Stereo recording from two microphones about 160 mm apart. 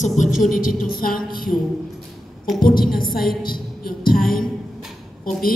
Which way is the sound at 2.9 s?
65° left (ahead or behind).